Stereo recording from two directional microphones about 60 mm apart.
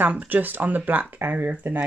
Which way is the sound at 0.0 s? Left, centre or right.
Right.